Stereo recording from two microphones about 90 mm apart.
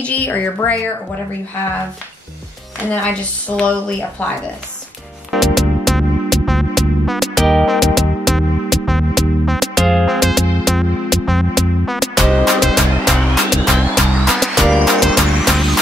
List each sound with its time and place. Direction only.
0.0 s speech: 15° left (ahead or behind)
3.4 s speech: 15° left (ahead or behind)
5.3 s music: centre (ahead or behind)